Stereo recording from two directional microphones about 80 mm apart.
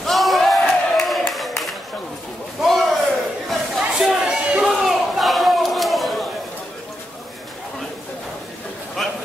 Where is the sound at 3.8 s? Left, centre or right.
Centre.